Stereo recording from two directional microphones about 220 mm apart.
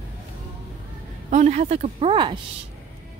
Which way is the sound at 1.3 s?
35° right (ahead or behind).